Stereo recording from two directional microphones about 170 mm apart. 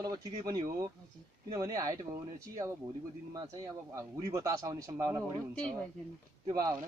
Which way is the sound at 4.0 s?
20° right (ahead or behind).